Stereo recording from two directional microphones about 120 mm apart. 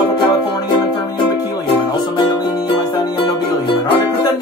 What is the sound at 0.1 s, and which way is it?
Music, 45° left (ahead or behind).